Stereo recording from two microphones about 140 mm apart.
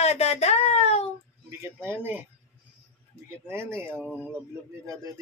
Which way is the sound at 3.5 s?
15° right (ahead or behind).